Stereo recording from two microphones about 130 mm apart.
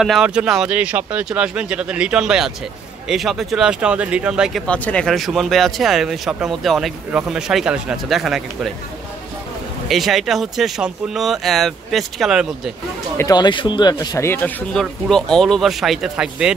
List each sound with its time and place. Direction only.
0.0 s speech: 5° right (ahead or behind)
4.6 s speech: 10° left (ahead or behind)
9.8 s speech: centre (ahead or behind)
13.2 s speech: 30° left (ahead or behind)
13.9 s speech: 25° left (ahead or behind); by 16.5 s 5° right (ahead or behind)